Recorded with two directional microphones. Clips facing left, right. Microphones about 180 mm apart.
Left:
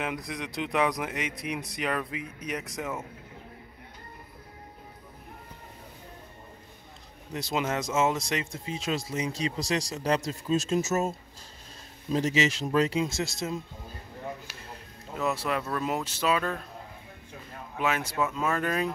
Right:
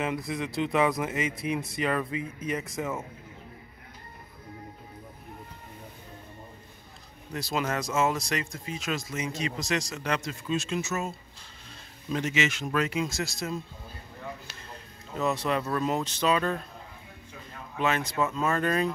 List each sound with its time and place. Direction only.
0.0 s speech: centre (ahead or behind)
7.3 s speech: 20° left (ahead or behind)
14.5 s speech: 5° left (ahead or behind)
17.7 s speech: 10° left (ahead or behind)